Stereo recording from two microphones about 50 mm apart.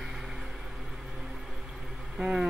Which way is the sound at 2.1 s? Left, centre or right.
Centre.